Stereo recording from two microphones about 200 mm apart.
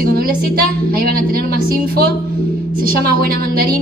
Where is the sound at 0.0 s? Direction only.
45° right (ahead or behind).